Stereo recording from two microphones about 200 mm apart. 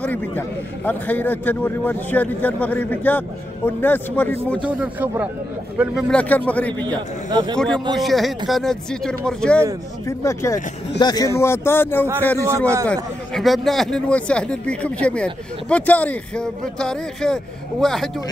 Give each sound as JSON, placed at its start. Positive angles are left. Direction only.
{"t": 0.0, "sound": "a man's voice", "side_deg": 10}
{"t": 4.6, "sound": "a man's voice", "side_deg": -5}
{"t": 7.2, "sound": "speech", "side_deg": -20}
{"t": 7.5, "sound": "a man's voice", "side_deg": 5}
{"t": 10.0, "sound": "a man's voice", "side_deg": 15}